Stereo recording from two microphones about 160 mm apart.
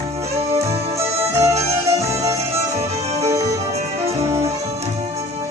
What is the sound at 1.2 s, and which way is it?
Music, 15° right (ahead or behind).